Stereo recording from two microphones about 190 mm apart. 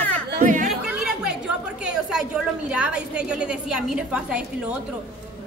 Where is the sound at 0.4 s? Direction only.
45° right (ahead or behind).